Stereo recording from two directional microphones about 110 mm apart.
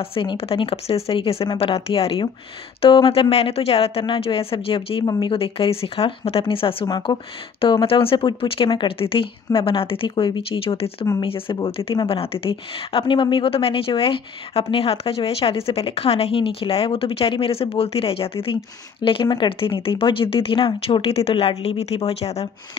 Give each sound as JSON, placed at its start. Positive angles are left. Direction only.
{"t": 0.0, "sound": "a woman's voice", "side_deg": 55}
{"t": 6.9, "sound": "speech", "side_deg": 45}
{"t": 7.6, "sound": "a woman's voice", "side_deg": 55}
{"t": 19.2, "sound": "a woman's voice", "side_deg": 45}